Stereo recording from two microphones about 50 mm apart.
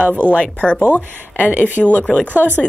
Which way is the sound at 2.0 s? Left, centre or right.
Centre.